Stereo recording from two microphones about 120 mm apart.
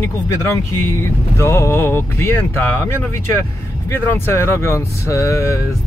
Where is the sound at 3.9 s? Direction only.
20° left (ahead or behind).